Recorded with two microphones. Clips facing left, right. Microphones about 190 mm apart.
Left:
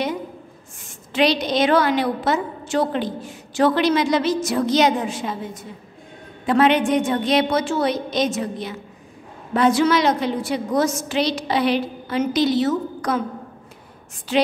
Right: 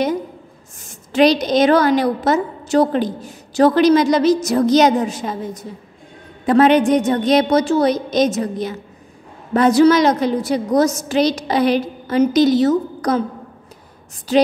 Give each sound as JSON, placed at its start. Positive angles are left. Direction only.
{"t": 0.8, "sound": "a woman's voice", "side_deg": -45}
{"t": 14.3, "sound": "a woman's voice", "side_deg": -40}